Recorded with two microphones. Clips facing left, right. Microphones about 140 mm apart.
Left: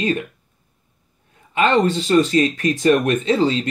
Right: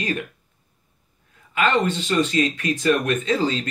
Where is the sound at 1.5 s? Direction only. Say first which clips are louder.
Left 4 dB; 30° left (ahead or behind).